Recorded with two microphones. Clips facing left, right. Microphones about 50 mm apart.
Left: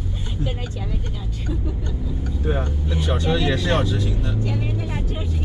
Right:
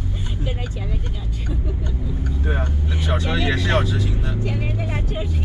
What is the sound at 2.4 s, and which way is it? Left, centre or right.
Speech, centre.